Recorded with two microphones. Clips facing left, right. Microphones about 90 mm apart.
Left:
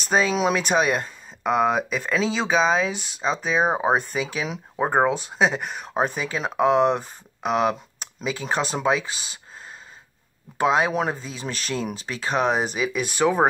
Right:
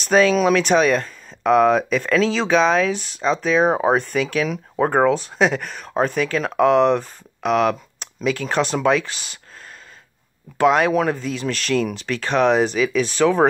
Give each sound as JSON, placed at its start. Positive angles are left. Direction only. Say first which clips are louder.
{"t": 0.1, "sound": "speech", "louder": "right 6 dB", "side_deg": 10}
{"t": 10.6, "sound": "speech", "louder": "right 4 dB", "side_deg": 15}
{"t": 12.2, "sound": "speech", "louder": "right 5 dB", "side_deg": 10}